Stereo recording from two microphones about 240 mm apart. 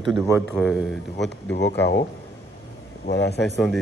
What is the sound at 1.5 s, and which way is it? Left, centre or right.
Speech, left.